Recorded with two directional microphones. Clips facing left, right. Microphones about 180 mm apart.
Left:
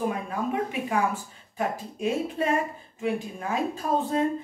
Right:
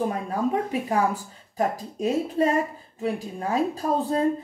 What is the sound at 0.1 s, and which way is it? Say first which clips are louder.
Speech: right 4 dB; 35° right (ahead or behind).